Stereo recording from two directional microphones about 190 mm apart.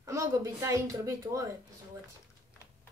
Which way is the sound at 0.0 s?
15° right (ahead or behind).